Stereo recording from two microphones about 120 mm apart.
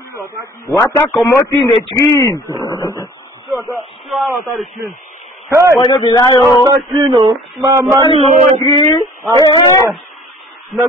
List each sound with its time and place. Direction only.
0.1 s a man's voice: 25° right (ahead or behind)
0.7 s speech: 25° left (ahead or behind)
3.4 s a man's voice: centre (ahead or behind)
5.5 s child singing: 25° right (ahead or behind)
5.8 s speech: 35° left (ahead or behind)
6.6 s a sound: 30° right (ahead or behind)
7.6 s child singing: 30° right (ahead or behind)
8.6 s speech: 35° left (ahead or behind)
10.7 s a man's voice: centre (ahead or behind)